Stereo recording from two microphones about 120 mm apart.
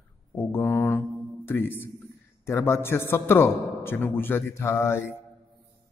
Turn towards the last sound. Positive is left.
turn(degrees=20)  # may be behind; listen again after turning